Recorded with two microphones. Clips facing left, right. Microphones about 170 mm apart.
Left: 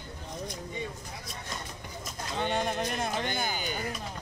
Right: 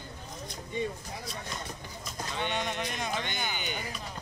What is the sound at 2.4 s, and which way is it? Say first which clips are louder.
Speech: left 4 dB; 45° left (ahead or behind).